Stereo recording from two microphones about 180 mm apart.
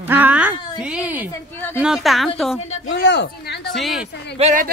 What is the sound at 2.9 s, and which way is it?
Speech, 70° left (ahead or behind).